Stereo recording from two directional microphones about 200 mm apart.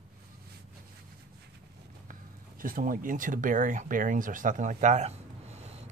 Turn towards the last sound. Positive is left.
turn(degrees=-35)  # may be behind; listen again after turning